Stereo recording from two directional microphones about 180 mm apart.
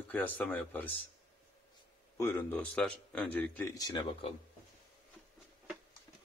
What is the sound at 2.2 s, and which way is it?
Speech, 15° left (ahead or behind).